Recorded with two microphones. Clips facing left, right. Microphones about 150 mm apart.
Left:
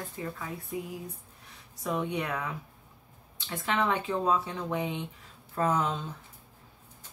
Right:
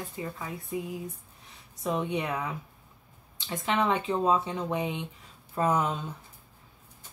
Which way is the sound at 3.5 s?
20° right (ahead or behind).